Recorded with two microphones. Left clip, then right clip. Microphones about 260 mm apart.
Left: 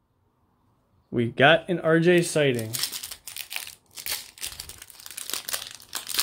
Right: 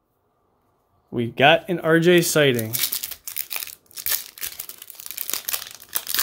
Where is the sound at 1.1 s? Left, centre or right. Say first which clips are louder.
Right 2 dB; centre.